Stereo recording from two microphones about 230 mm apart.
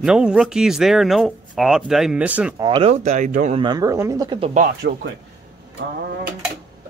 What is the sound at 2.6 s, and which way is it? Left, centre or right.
Speech, right.